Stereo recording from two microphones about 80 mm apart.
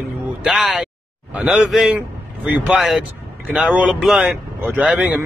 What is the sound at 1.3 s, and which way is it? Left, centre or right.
Speech, centre.